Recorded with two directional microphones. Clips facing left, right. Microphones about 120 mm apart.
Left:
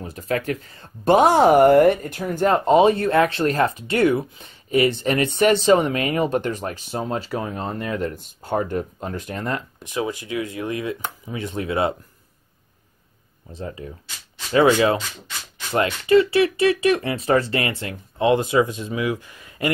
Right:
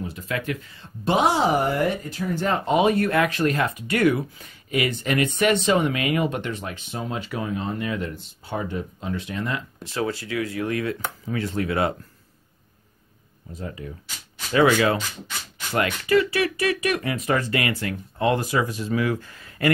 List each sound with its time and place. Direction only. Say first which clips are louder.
0.0 s speech: left 4 dB; 40° left (ahead or behind)
9.8 s speech: left 1 dB; 15° left (ahead or behind)
13.5 s speech: left 2 dB; 30° left (ahead or behind)